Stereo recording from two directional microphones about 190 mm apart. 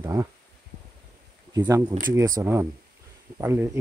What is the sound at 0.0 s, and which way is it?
Speech, 15° right (ahead or behind).